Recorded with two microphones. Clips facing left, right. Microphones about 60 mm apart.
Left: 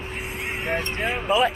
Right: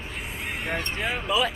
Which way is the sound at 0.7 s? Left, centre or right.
Left.